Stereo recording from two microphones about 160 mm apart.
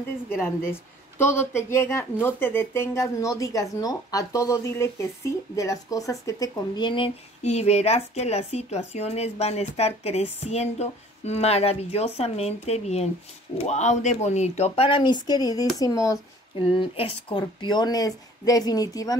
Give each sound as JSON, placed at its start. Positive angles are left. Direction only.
{"t": 0.4, "sound": "a woman's voice", "side_deg": 15}
{"t": 16.7, "sound": "speech", "side_deg": 35}